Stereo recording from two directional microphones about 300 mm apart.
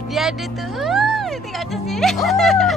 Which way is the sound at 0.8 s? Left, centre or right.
Centre.